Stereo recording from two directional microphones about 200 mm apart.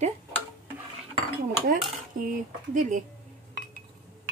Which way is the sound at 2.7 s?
40° right (ahead or behind).